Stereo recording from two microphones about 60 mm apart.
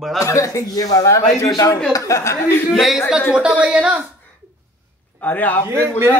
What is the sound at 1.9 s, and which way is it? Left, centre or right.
Speech, left.